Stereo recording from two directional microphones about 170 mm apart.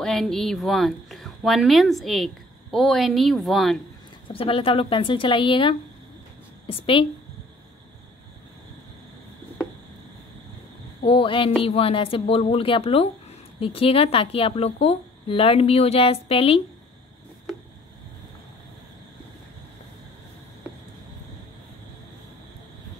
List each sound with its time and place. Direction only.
0.0 s a woman's voice: centre (ahead or behind)
4.3 s a woman's voice: 30° left (ahead or behind)
11.1 s speech: 30° left (ahead or behind)